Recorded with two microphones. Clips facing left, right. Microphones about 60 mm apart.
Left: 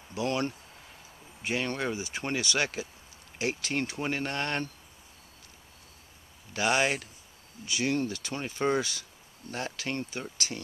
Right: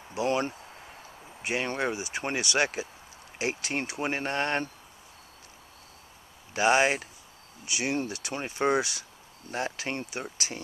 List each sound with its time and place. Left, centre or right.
0.2 s speech: centre
6.5 s speech: right